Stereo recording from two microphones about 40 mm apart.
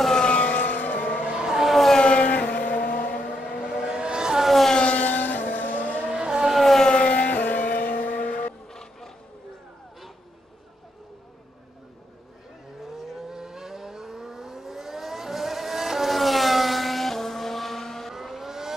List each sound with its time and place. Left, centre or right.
0.1 s vehicle: left
0.6 s vehicle: left
1.4 s vehicle: centre
1.7 s vehicle: centre
2.0 s vehicle: left
3.4 s vehicle: centre
4.7 s vehicle: left
5.0 s vehicle: left
6.0 s vehicle: centre
6.5 s siren: centre
6.9 s vehicle: left
8.6 s a sound: centre
12.8 s vehicle: centre
18.1 s vehicle: centre